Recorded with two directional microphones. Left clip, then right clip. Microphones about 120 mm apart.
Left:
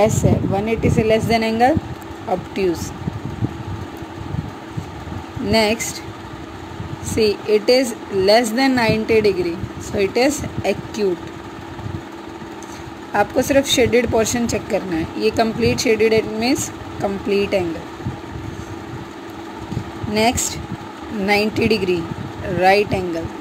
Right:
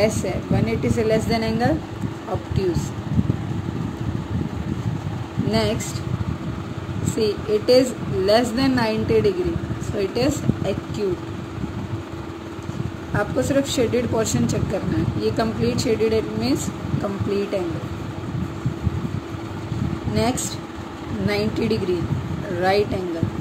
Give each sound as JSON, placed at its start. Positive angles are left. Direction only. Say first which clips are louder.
{"t": 0.0, "sound": "speech", "louder": "left 5 dB", "side_deg": 45}
{"t": 5.5, "sound": "speech", "louder": "left 6 dB", "side_deg": 35}
{"t": 7.2, "sound": "speech", "louder": "left 5 dB", "side_deg": 35}
{"t": 13.1, "sound": "speech", "louder": "left 5 dB", "side_deg": 40}
{"t": 20.2, "sound": "speech", "louder": "left 6 dB", "side_deg": 35}